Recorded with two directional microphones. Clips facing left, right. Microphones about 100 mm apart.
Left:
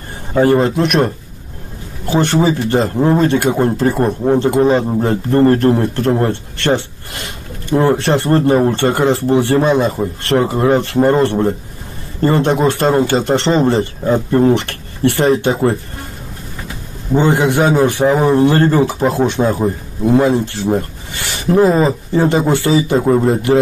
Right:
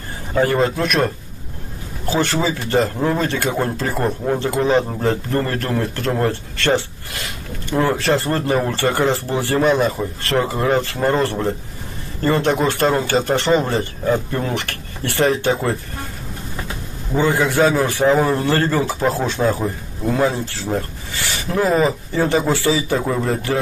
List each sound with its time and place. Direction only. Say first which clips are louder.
0.3 s a man's voice: left 5 dB; 25° left (ahead or behind)
17.1 s a man's voice: left 5 dB; 25° left (ahead or behind)
22.9 s speech: left 8 dB; 30° left (ahead or behind)
23.2 s a man's voice: left 8 dB; 20° left (ahead or behind)